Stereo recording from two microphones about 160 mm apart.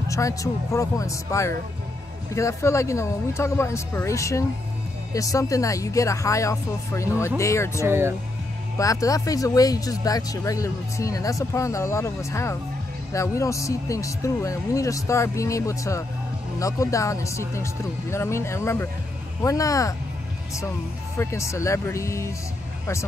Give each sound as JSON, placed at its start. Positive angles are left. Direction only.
{"t": 0.1, "sound": "speech", "side_deg": 20}
{"t": 7.8, "sound": "speech", "side_deg": -15}
{"t": 8.7, "sound": "speech", "side_deg": 20}
{"t": 21.2, "sound": "speech", "side_deg": 20}